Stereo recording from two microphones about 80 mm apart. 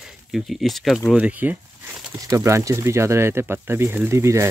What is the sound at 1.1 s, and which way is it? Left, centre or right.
Speech, centre.